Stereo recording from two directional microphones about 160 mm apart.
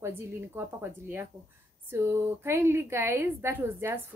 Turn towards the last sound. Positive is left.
turn(degrees=-15)  # may be behind; listen again after turning